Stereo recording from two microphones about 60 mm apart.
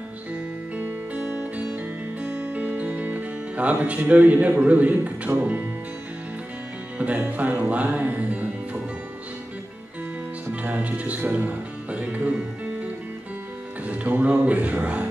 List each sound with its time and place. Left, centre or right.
0.7 s music: right
5.4 s speech: right
7.0 s music: right
10.5 s music: right
13.8 s speech: right